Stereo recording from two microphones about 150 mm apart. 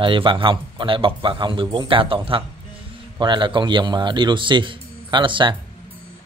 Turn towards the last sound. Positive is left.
turn(degrees=-30)  # may be behind; listen again after turning